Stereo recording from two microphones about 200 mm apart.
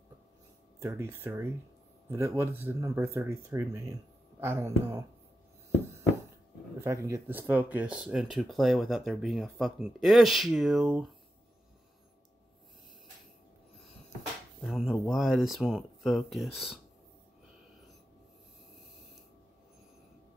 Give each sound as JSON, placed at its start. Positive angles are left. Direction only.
{"t": 0.7, "sound": "speech", "side_deg": -15}
{"t": 6.8, "sound": "speech", "side_deg": -15}
{"t": 14.6, "sound": "speech", "side_deg": 0}